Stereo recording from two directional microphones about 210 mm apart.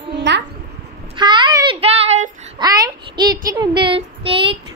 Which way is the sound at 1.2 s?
20° right (ahead or behind).